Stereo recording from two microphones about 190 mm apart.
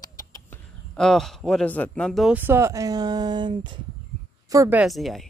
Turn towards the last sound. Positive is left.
turn(degrees=0)  # may be behind; listen again after turning